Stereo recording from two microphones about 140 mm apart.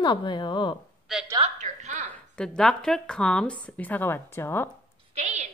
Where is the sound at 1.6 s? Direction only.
60° right (ahead or behind).